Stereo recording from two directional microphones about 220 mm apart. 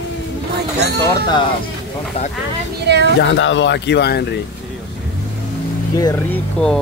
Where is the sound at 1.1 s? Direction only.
20° left (ahead or behind).